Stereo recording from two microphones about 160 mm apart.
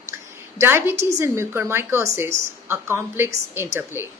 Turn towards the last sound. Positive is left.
turn(degrees=-15)  # may be behind; listen again after turning